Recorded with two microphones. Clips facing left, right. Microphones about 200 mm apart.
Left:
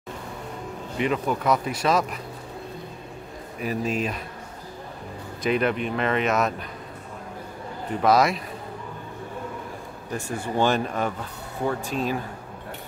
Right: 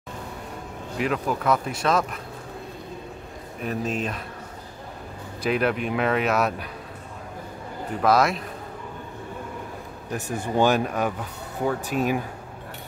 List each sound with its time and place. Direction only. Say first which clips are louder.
0.9 s speech: left 1 dB; centre (ahead or behind)
3.6 s speech: left 1 dB; 5° left (ahead or behind)
5.5 s speech: even; 5° right (ahead or behind)
8.0 s speech: even; centre (ahead or behind)
10.2 s speech: right 2 dB; 10° left (ahead or behind)
10.6 s speech: right 2 dB; 10° right (ahead or behind)